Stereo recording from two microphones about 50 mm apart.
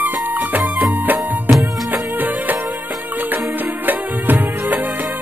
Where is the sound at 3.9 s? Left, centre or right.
Right.